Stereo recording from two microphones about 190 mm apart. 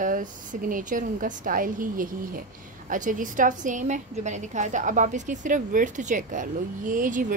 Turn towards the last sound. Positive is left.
turn(degrees=-45)  # may be behind; listen again after turning